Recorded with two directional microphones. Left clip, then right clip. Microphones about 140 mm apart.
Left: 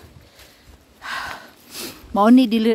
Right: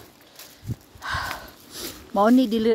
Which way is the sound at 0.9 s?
15° left (ahead or behind).